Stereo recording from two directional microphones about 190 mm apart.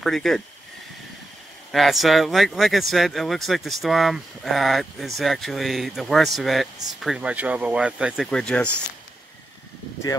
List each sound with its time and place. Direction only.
0.0 s speech: centre (ahead or behind)
1.7 s speech: centre (ahead or behind)